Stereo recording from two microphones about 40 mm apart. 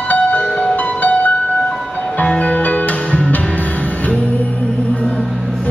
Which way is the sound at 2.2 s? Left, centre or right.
Left.